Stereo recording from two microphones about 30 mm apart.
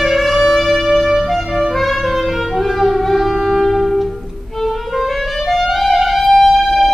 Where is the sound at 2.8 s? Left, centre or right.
Centre.